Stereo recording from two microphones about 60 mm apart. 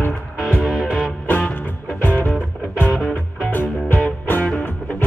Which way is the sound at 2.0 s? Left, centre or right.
Left.